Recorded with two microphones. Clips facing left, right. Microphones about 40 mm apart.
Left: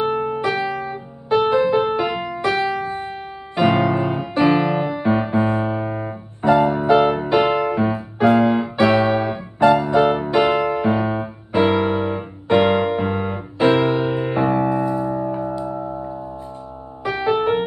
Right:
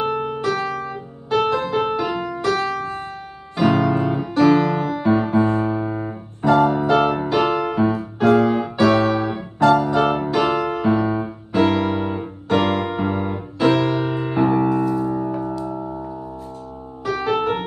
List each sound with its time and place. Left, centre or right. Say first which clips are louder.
0.0 s music: left 1 dB; left